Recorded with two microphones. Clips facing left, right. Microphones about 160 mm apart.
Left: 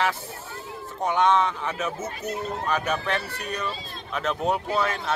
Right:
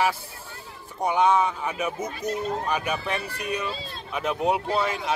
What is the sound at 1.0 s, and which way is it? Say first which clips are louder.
Speech: even; 10° right (ahead or behind).